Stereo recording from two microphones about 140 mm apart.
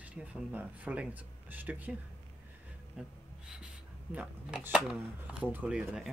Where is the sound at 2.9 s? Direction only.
5° right (ahead or behind).